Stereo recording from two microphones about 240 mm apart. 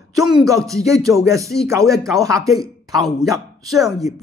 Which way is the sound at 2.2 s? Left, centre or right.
Centre.